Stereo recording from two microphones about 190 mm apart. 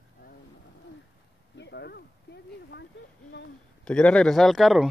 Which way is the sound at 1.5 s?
65° left (ahead or behind).